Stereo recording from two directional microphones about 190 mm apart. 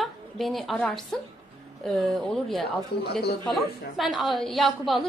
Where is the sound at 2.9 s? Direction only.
60° left (ahead or behind).